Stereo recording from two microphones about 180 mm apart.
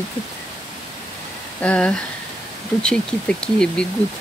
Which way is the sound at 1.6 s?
5° left (ahead or behind).